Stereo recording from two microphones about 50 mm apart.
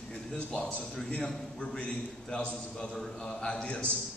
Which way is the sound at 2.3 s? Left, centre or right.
Centre.